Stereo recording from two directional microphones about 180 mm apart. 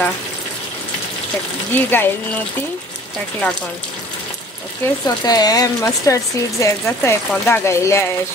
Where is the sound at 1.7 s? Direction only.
10° left (ahead or behind).